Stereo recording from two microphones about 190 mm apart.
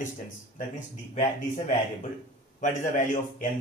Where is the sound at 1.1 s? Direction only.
35° left (ahead or behind).